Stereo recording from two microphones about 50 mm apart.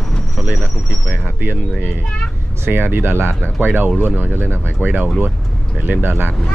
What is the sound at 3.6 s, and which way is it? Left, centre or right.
Speech, right.